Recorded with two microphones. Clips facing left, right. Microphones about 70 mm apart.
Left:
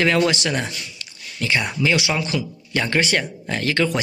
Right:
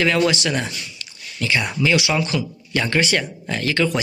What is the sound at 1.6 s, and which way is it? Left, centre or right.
Speech, centre.